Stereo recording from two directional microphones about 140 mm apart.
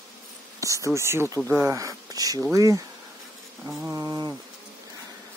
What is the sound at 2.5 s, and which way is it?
Mantra, 25° right (ahead or behind).